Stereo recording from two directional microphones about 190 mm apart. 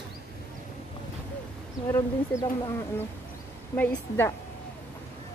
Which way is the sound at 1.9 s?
15° left (ahead or behind).